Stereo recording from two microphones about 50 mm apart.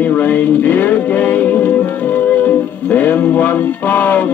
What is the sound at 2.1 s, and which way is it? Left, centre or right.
Music, left.